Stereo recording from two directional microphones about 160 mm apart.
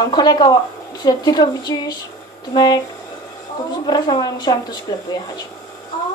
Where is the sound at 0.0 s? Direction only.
25° left (ahead or behind).